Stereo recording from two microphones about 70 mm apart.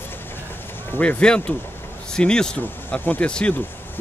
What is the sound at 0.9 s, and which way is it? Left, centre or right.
Speech, centre.